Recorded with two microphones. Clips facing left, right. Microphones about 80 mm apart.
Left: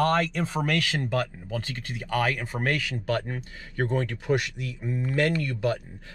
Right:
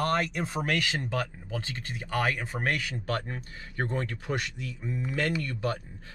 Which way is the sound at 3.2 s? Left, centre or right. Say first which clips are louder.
Left 3 dB; centre.